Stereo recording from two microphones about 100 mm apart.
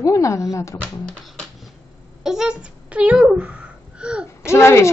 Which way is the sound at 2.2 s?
5° right (ahead or behind).